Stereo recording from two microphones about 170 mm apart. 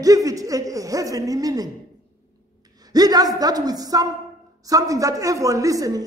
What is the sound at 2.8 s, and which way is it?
Speech, 20° right (ahead or behind).